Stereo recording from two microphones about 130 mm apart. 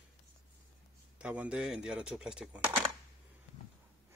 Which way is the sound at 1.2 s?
10° right (ahead or behind).